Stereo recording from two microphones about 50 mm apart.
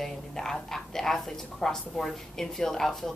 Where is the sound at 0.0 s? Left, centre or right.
Centre.